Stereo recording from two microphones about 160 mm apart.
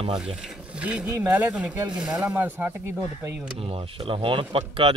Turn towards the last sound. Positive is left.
turn(degrees=-35)  # may be behind; listen again after turning